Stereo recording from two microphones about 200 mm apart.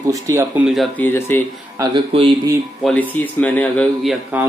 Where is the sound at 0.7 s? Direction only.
Centre (ahead or behind).